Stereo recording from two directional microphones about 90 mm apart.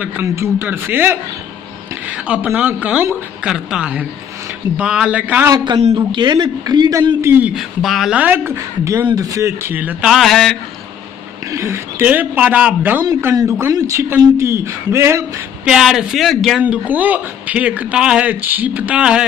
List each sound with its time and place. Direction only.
0.0 s a man's voice: 15° right (ahead or behind)
5.7 s a man's voice: 60° right (ahead or behind)
7.2 s a man's voice: 25° right (ahead or behind)
7.5 s speech: 5° right (ahead or behind)
8.1 s a man's voice: 20° right (ahead or behind)
9.1 s a man's voice: 40° right (ahead or behind)
9.6 s a man's voice: 20° right (ahead or behind)
10.0 s speech: centre (ahead or behind)
11.5 s a man's voice: 30° right (ahead or behind)
12.1 s a man's voice: 20° right (ahead or behind)
13.5 s a man's voice: 30° right (ahead or behind)
15.6 s speech: 5° right (ahead or behind)
16.6 s a man's voice: 20° right (ahead or behind)